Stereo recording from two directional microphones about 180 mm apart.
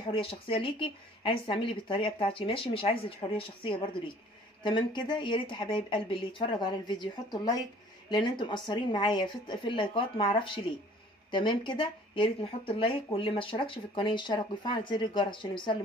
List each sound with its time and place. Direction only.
0.1 s speech: 30° left (ahead or behind)